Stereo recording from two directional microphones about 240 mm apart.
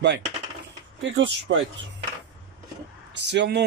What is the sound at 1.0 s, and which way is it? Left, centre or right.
Speech, right.